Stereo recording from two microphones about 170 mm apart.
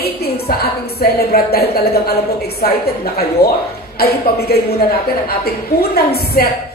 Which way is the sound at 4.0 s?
65° left (ahead or behind).